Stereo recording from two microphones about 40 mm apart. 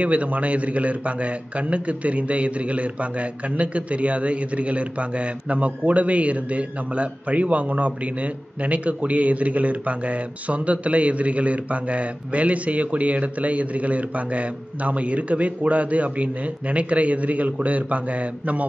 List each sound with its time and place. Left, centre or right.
0.0 s a man's voice: right